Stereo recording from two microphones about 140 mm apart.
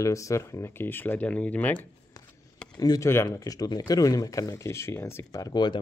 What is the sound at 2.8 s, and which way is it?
Speech, 25° left (ahead or behind).